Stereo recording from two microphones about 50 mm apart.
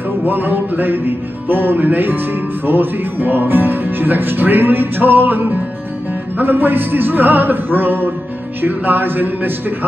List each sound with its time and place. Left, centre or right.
0.3 s music: right
8.5 s speech: right